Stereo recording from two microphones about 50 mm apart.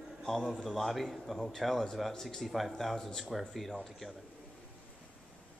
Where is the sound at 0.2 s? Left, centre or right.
Centre.